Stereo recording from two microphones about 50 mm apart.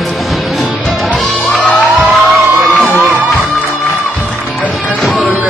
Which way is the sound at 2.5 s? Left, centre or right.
Right.